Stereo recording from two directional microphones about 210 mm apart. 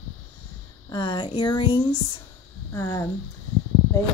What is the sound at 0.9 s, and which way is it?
Speech, 20° left (ahead or behind).